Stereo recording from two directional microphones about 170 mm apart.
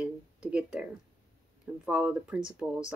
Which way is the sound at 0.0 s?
5° right (ahead or behind).